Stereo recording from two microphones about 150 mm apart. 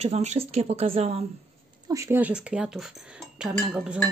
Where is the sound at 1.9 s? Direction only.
20° right (ahead or behind).